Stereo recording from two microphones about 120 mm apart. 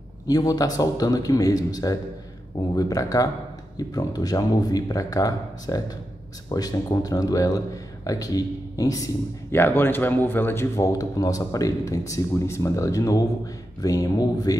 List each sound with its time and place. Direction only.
0.3 s a man's voice: 30° left (ahead or behind)
9.6 s a man's voice: 15° left (ahead or behind)